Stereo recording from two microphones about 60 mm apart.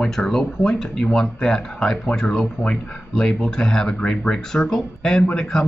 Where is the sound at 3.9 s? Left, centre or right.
Centre.